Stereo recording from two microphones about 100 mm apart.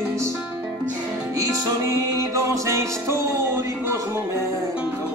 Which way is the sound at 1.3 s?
30° right (ahead or behind).